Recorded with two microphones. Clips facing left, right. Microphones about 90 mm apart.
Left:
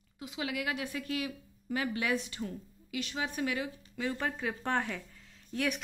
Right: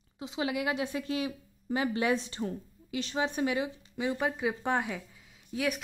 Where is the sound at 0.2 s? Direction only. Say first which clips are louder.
Right 4 dB; 25° right (ahead or behind).